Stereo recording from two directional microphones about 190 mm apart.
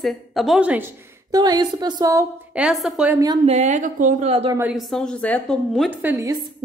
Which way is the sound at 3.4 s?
35° right (ahead or behind).